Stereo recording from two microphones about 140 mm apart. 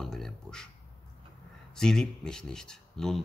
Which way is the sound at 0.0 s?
Centre (ahead or behind).